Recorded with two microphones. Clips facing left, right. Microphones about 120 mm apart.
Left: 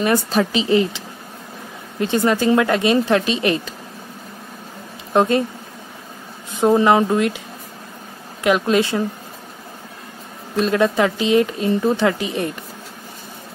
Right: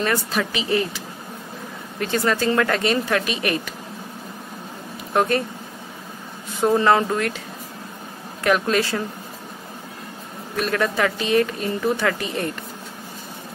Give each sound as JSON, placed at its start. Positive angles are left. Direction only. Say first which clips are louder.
{"t": 0.3, "sound": "speech", "louder": "left 6 dB", "side_deg": 30}
{"t": 5.1, "sound": "speech", "louder": "left 4 dB", "side_deg": 20}
{"t": 6.6, "sound": "speech", "louder": "left 3 dB", "side_deg": 15}
{"t": 8.5, "sound": "speech", "louder": "left 3 dB", "side_deg": 20}
{"t": 10.5, "sound": "speech", "louder": "left 5 dB", "side_deg": 20}